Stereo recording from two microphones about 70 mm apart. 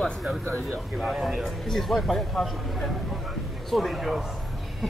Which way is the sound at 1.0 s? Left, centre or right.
Centre.